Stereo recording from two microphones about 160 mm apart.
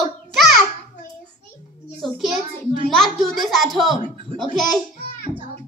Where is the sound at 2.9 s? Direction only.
Centre (ahead or behind).